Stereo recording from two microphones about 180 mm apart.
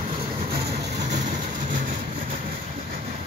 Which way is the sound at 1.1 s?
45° right (ahead or behind).